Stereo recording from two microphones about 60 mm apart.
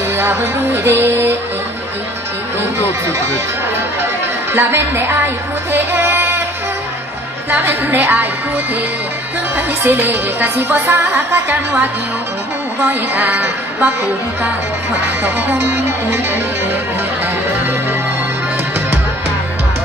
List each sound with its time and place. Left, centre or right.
0.8 s speech: right
4.6 s speech: right
7.5 s speech: right
9.8 s speech: right
13.2 s music: right
15.2 s speech: right